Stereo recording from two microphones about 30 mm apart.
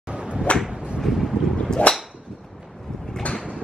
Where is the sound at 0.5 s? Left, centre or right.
Left.